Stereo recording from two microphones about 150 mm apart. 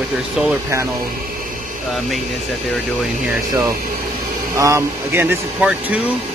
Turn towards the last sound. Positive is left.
turn(degrees=-15)  # may be behind; listen again after turning